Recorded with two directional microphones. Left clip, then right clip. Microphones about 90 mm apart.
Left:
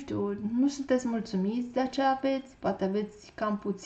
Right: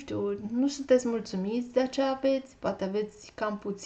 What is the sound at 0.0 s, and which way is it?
A woman's voice, 25° right (ahead or behind).